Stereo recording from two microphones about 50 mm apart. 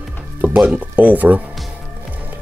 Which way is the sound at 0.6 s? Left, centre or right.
Right.